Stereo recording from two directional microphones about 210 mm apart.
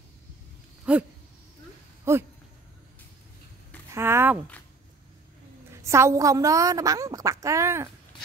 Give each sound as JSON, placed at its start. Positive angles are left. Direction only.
{"t": 0.9, "sound": "dog", "side_deg": -5}
{"t": 2.1, "sound": "a woman's voice", "side_deg": -15}
{"t": 3.9, "sound": "speech", "side_deg": -10}
{"t": 5.7, "sound": "a woman's voice", "side_deg": -15}